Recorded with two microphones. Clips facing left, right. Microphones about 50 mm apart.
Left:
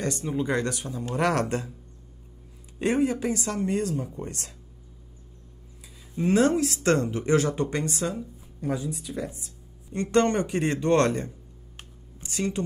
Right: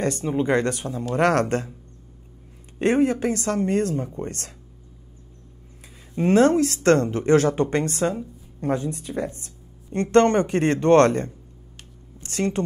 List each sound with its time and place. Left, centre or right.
0.0 s speech: right
2.8 s speech: right
6.1 s a woman's voice: right